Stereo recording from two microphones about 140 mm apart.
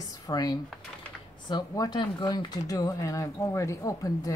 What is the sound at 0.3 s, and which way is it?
Speech, 30° left (ahead or behind).